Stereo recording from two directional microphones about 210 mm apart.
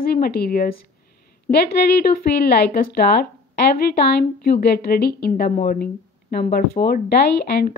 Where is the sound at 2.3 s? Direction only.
50° left (ahead or behind).